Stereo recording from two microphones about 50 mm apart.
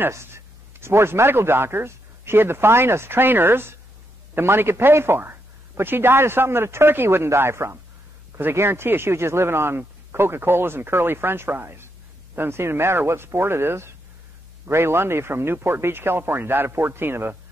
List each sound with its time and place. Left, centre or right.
0.1 s speech: right
7.2 s speech: right
8.4 s speech: right